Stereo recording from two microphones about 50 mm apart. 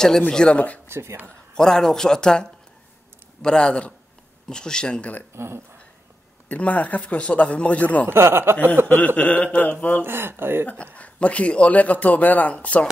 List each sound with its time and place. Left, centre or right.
0.3 s speech: centre
0.8 s speech: right
1.5 s speech: centre
5.3 s speech: right
6.5 s speech: left
8.1 s speech: right
8.8 s speech: left
10.0 s speech: right
11.0 s speech: left